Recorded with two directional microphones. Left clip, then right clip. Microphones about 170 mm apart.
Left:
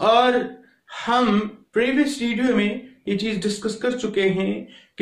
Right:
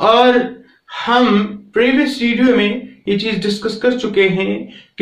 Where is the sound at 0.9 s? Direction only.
25° left (ahead or behind).